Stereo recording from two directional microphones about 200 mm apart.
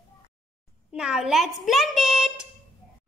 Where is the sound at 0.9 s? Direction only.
5° right (ahead or behind).